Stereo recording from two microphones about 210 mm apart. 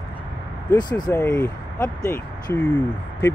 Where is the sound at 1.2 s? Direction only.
10° left (ahead or behind).